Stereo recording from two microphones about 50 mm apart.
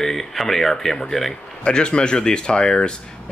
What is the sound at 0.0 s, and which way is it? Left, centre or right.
Speech, centre.